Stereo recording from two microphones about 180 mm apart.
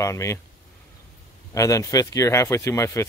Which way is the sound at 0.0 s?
15° left (ahead or behind).